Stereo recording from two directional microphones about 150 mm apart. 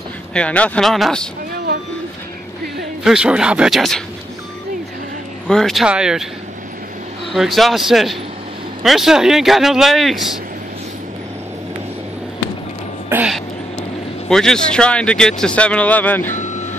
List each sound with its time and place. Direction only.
0.3 s a man's voice: 10° left (ahead or behind)
3.0 s a man's voice: 5° right (ahead or behind)
5.5 s a man's voice: centre (ahead or behind)
7.3 s a man's voice: centre (ahead or behind)
14.3 s speech: 5° left (ahead or behind)
16.3 s vehicle: 55° left (ahead or behind)